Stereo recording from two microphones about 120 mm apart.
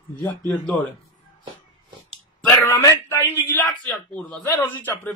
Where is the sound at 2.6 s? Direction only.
30° left (ahead or behind).